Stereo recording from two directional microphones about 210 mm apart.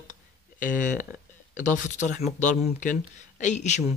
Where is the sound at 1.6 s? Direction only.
35° left (ahead or behind).